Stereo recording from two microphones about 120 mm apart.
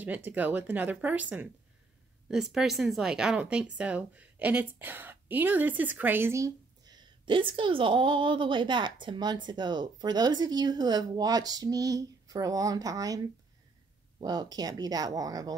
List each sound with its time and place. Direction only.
0.0 s a woman's voice: 15° right (ahead or behind); by 13.2 s 30° right (ahead or behind)
14.2 s a woman's voice: 35° right (ahead or behind)